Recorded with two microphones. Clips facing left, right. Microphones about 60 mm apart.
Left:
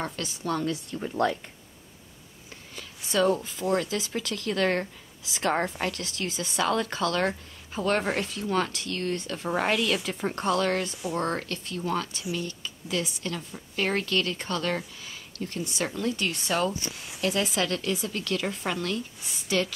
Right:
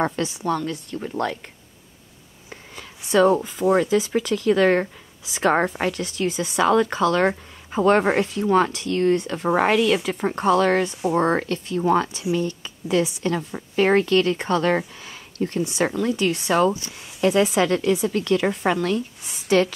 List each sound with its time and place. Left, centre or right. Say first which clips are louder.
0.1 s speech: right 9 dB; right
0.7 s speech: right 2 dB; centre
2.7 s a sound: right 8 dB; right
3.5 s speech: right 8 dB; centre
5.6 s speech: right 6 dB; right
5.9 s speech: right 8 dB; centre
7.2 s a woman's voice: right 7 dB; right
15.0 s a sound: right 9 dB; right
15.6 s speech: right 6 dB; right